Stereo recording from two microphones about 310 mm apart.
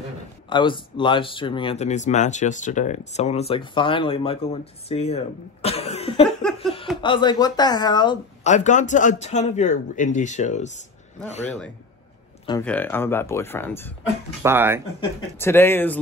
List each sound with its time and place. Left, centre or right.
0.5 s speech: centre
12.4 s speech: centre
14.4 s speech: centre
15.0 s speech: centre